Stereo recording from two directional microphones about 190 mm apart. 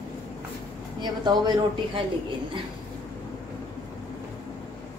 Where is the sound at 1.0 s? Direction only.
25° right (ahead or behind).